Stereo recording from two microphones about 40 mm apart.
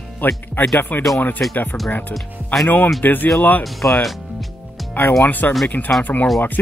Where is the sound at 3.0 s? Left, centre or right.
Left.